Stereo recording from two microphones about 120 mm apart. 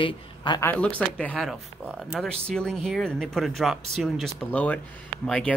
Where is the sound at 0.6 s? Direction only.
10° left (ahead or behind).